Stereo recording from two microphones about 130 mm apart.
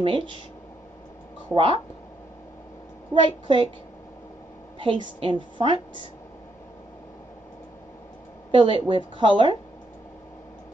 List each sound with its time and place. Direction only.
0.0 s speech: 40° right (ahead or behind)
1.5 s a woman's voice: 40° right (ahead or behind)
3.2 s a woman's voice: 40° right (ahead or behind)
4.7 s a woman's voice: 40° right (ahead or behind)
8.5 s a woman's voice: 40° right (ahead or behind)